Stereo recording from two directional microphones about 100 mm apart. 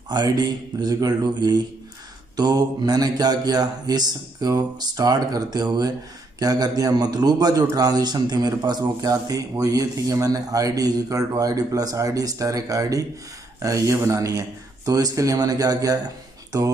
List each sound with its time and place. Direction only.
0.1 s a man's voice: 45° right (ahead or behind)